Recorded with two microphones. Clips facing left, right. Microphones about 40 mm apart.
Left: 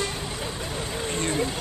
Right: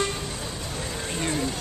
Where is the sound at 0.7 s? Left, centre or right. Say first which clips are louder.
Left 2 dB; centre.